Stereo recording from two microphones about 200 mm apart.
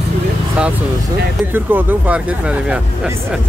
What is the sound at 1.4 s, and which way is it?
Speech, 10° right (ahead or behind).